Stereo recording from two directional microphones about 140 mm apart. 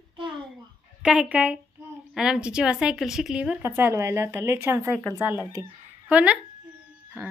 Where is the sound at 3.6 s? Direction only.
15° right (ahead or behind).